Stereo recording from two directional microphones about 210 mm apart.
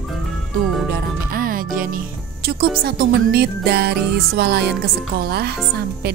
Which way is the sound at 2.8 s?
45° right (ahead or behind).